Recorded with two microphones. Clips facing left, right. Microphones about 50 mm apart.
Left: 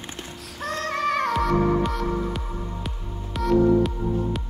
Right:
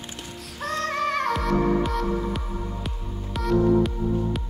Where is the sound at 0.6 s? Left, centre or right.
Centre.